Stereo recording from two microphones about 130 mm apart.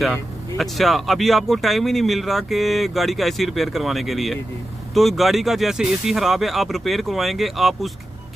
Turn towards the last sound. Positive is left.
turn(degrees=0)  # may be behind; listen again after turning